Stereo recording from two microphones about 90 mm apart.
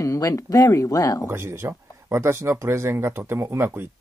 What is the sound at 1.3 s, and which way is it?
Speech, 25° right (ahead or behind).